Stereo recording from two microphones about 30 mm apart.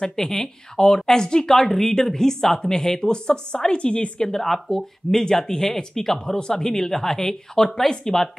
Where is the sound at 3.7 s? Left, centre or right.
Left.